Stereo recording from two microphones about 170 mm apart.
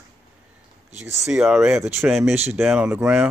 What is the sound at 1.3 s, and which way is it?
Speech, 5° right (ahead or behind).